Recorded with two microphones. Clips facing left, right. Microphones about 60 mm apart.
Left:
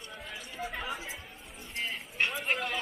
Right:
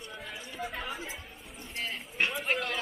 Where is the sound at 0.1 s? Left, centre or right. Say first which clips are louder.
Even; centre.